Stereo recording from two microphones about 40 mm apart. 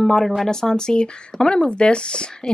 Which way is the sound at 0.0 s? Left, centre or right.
Centre.